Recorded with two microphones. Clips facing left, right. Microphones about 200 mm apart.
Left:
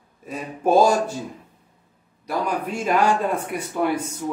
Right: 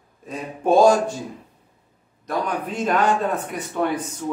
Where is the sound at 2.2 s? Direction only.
10° left (ahead or behind).